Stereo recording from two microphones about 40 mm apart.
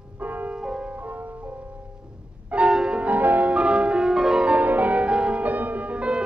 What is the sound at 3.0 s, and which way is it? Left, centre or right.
Music, right.